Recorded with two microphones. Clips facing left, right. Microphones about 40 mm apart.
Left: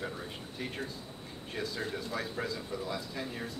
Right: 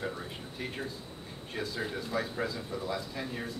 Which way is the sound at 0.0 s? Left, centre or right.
Centre.